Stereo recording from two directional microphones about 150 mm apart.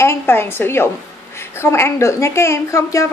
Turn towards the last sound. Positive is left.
turn(degrees=20)  # may be behind; listen again after turning